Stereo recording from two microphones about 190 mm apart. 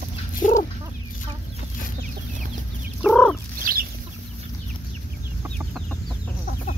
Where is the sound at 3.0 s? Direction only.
5° left (ahead or behind).